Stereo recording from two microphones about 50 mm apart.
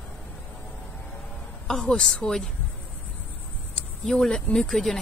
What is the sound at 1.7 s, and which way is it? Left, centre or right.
Speech, centre.